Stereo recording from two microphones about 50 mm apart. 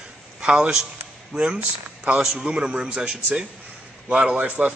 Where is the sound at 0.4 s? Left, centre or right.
Centre.